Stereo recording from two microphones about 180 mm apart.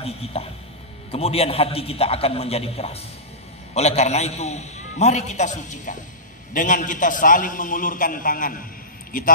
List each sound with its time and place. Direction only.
0.0 s a man's voice: 35° left (ahead or behind)